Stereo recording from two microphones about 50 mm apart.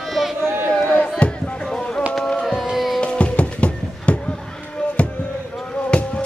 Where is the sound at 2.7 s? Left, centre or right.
Centre.